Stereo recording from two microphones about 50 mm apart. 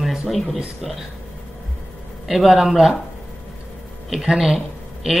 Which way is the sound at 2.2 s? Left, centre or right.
Centre.